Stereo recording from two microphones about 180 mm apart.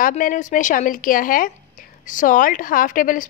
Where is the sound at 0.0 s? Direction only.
50° left (ahead or behind).